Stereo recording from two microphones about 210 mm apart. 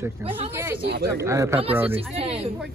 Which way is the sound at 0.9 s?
50° right (ahead or behind).